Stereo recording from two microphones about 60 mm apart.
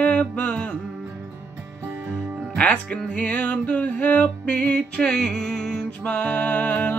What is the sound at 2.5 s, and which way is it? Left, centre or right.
Music, centre.